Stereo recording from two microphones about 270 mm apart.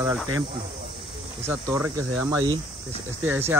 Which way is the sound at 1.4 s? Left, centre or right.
Centre.